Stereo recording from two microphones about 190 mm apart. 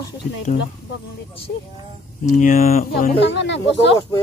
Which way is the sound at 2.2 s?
45° left (ahead or behind).